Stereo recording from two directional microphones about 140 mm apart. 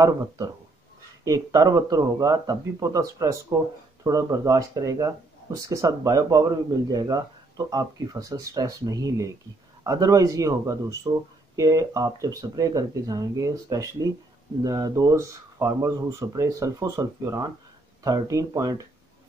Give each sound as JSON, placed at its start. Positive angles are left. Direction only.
{"t": 1.2, "sound": "speech", "side_deg": -25}